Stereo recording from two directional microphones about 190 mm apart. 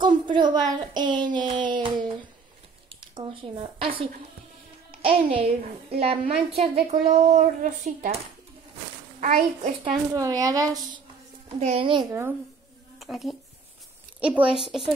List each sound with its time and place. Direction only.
0.0 s a woman's voice: 25° right (ahead or behind)
3.2 s speech: 25° right (ahead or behind)
5.0 s a child's voice: 30° right (ahead or behind)
9.2 s a child's voice: 40° right (ahead or behind)
10.1 s speech: 20° right (ahead or behind)
11.4 s speech: 30° right (ahead or behind)
12.1 s speech: 10° right (ahead or behind)
13.0 s a child's voice: centre (ahead or behind)